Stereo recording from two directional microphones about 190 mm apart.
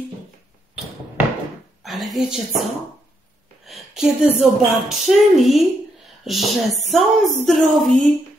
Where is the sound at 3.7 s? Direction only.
5° right (ahead or behind).